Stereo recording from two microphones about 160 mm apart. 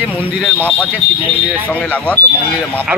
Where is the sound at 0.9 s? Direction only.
10° right (ahead or behind).